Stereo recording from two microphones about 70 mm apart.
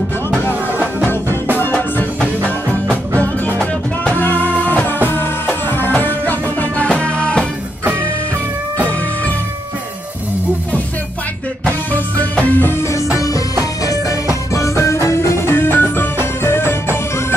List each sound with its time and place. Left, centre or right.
1.7 s music: left
6.9 s music: centre
12.2 s music: left
12.9 s music: left
14.5 s music: left